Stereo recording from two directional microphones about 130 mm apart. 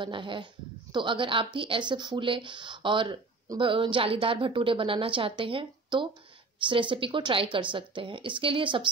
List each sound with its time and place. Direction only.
0.0 s a woman's voice: 40° right (ahead or behind)